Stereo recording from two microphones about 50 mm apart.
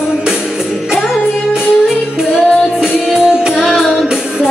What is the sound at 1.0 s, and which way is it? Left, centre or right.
Music, centre.